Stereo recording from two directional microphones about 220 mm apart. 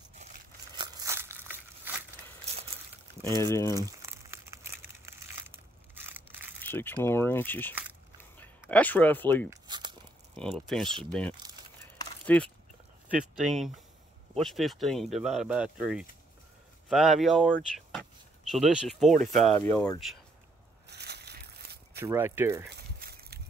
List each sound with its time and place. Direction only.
0.7 s crumpling: 15° right (ahead or behind)
3.4 s speech: 10° left (ahead or behind)
3.8 s crumpling: 10° right (ahead or behind)
5.0 s crushing: 10° right (ahead or behind)
6.6 s speech: 10° left (ahead or behind)
9.5 s biting: 20° right (ahead or behind)
10.7 s speech: centre (ahead or behind)
20.9 s a sound: 50° right (ahead or behind)
22.0 s speech: 10° right (ahead or behind)
22.8 s a sound: 45° right (ahead or behind)